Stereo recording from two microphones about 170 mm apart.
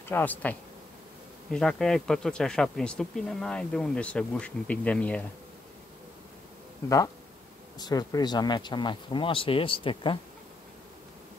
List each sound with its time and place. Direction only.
0.1 s speech: 10° left (ahead or behind)
7.8 s speech: 20° left (ahead or behind)